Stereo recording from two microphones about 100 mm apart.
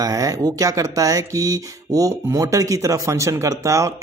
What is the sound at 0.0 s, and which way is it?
Speech, 35° right (ahead or behind).